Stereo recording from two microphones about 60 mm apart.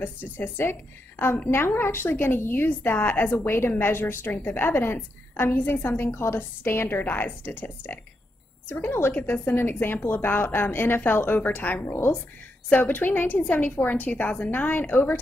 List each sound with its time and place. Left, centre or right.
0.0 s a woman's voice: left